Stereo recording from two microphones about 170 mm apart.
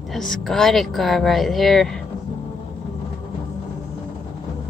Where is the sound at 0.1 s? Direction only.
5° left (ahead or behind).